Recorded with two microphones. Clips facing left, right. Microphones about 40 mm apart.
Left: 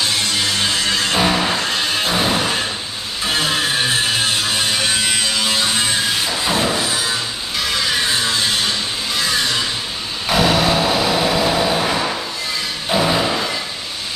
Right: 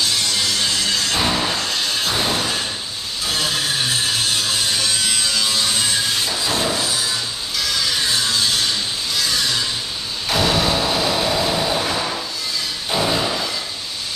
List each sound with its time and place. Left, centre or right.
0.4 s music: left
6.4 s a sound: left
10.3 s vehicle: centre
12.9 s music: left